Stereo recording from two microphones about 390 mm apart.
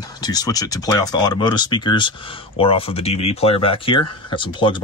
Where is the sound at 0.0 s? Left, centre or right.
Centre.